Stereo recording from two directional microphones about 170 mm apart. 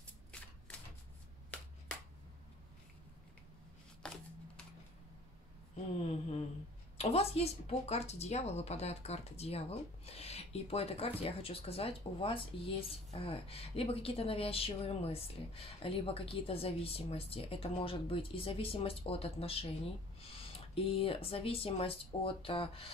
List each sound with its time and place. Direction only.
0.0 s typewriter: 5° left (ahead or behind)
4.0 s shuffling cards: 5° left (ahead or behind)
7.0 s a woman's voice: 35° left (ahead or behind)
20.7 s a woman's voice: 35° left (ahead or behind)